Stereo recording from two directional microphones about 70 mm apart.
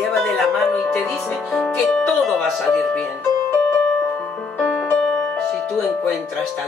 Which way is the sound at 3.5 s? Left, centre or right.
Left.